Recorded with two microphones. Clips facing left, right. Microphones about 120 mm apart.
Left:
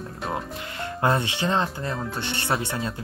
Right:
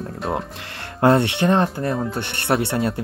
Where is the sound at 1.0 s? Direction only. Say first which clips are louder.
Right 8 dB; 70° right (ahead or behind).